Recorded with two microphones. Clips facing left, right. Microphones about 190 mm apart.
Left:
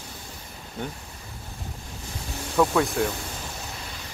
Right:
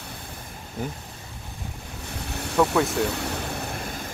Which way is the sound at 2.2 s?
65° right (ahead or behind).